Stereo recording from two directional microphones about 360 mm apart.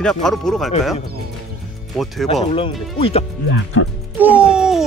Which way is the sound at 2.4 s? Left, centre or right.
Centre.